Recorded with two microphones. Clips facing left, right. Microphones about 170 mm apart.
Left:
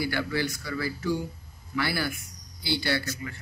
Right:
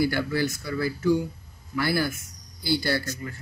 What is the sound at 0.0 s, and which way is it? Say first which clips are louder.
Speech: right 4 dB; 45° right (ahead or behind).